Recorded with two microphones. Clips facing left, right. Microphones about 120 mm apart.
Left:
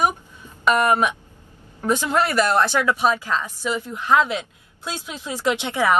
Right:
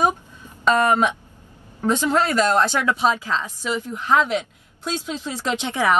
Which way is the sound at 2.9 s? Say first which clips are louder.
Even; 20° right (ahead or behind).